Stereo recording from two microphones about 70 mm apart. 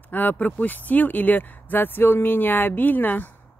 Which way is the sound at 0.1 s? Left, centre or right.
Left.